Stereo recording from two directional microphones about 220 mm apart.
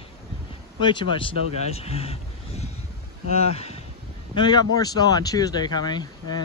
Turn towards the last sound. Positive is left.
turn(degrees=20)  # may be behind; listen again after turning